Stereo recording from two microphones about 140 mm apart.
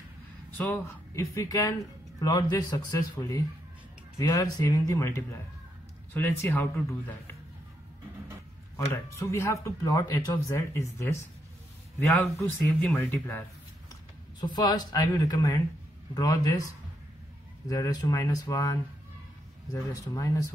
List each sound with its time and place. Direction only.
0.6 s speech: 15° left (ahead or behind)
8.9 s speech: 20° left (ahead or behind)
12.4 s speech: 15° left (ahead or behind)
14.4 s speech: 30° left (ahead or behind)
17.6 s speech: 25° left (ahead or behind)